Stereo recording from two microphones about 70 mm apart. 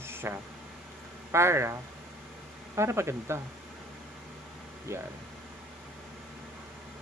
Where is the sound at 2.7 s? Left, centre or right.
Right.